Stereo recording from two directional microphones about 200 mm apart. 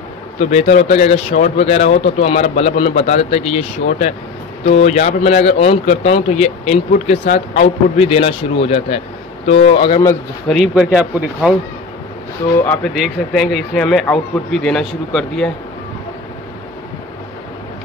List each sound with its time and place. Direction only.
0.5 s a man's voice: 35° left (ahead or behind)
10.7 s speech: 5° right (ahead or behind)
12.5 s speech: 10° left (ahead or behind)
12.9 s speech: centre (ahead or behind)